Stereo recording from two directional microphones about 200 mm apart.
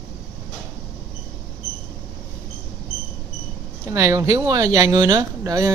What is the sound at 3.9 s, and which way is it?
Speech, 15° right (ahead or behind).